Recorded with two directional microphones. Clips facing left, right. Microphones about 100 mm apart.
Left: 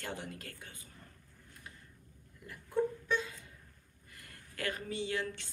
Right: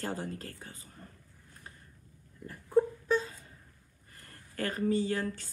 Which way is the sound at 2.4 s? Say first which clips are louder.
Right 6 dB; 40° right (ahead or behind).